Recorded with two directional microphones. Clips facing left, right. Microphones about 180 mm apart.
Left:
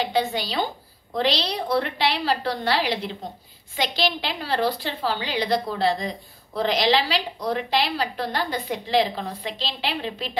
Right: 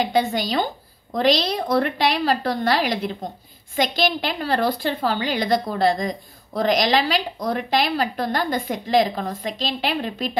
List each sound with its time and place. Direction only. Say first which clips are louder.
0.0 s a woman's voice: right 3 dB; 45° right (ahead or behind)